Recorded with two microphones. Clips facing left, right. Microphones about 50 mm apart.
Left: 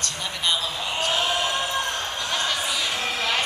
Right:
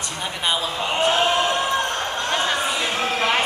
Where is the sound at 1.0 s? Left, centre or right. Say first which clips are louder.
Right 5 dB; right.